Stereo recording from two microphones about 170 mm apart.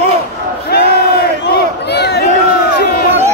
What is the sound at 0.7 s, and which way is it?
Crowd, 70° left (ahead or behind).